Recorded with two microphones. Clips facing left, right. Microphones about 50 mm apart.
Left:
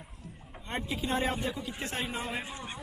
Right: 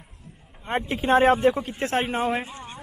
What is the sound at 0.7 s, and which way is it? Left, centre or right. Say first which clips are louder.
Speech: right 10 dB; right.